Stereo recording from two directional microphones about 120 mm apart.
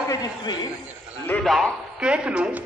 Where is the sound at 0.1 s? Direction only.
35° left (ahead or behind).